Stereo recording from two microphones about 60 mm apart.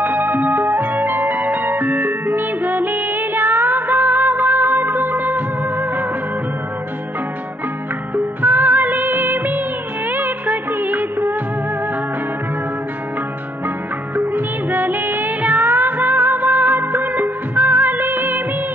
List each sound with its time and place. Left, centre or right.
0.0 s music: right
8.4 s music: right
10.0 s music of bollywood: right
14.1 s music: right